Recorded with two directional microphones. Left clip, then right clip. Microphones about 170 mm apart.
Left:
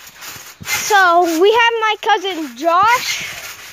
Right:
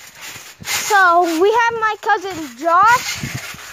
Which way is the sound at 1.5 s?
15° left (ahead or behind).